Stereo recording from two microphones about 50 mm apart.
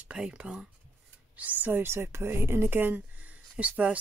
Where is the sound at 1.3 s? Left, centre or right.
Right.